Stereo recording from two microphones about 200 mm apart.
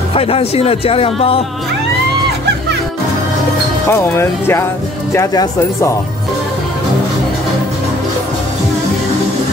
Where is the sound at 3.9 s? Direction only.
15° left (ahead or behind).